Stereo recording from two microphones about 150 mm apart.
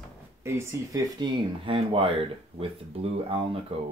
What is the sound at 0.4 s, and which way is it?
Speech, 20° right (ahead or behind).